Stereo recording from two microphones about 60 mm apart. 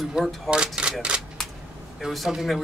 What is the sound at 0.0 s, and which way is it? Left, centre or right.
Speech, centre.